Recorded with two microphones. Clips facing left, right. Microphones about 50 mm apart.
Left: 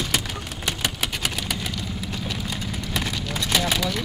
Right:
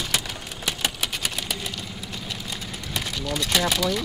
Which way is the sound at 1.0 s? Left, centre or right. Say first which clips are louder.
Left 2 dB; left.